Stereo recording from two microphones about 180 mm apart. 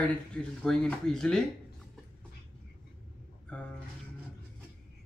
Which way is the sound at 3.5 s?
5° left (ahead or behind).